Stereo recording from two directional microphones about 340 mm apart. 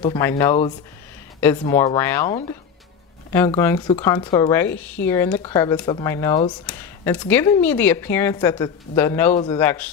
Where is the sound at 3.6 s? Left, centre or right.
Centre.